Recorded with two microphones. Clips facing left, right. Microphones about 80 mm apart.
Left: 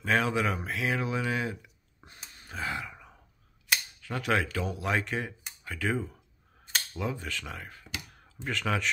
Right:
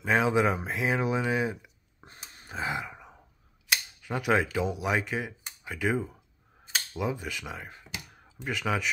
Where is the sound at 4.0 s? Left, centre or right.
Centre.